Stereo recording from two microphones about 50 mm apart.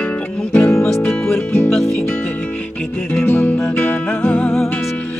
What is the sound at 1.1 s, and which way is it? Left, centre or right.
Music, centre.